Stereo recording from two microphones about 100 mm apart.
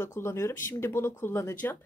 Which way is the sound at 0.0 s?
25° left (ahead or behind).